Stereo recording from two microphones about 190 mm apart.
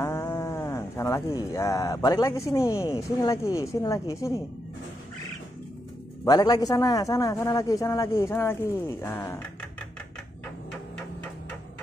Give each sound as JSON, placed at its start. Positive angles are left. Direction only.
{"t": 0.0, "sound": "a man's voice", "side_deg": 15}
{"t": 6.2, "sound": "a man's voice", "side_deg": 20}